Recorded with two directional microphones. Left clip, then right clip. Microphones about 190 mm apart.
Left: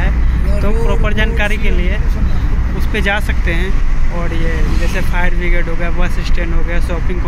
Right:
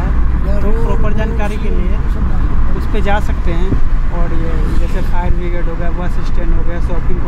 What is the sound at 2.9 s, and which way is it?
Speech, 5° right (ahead or behind).